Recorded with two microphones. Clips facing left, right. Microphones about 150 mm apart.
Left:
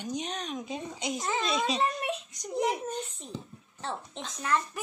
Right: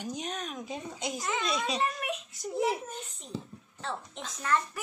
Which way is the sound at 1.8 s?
25° left (ahead or behind).